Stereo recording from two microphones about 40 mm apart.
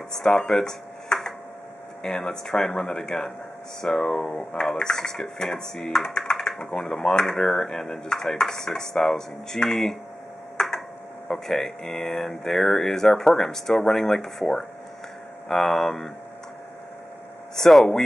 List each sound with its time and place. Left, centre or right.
0.1 s speech: centre
11.2 s speech: centre
17.6 s speech: centre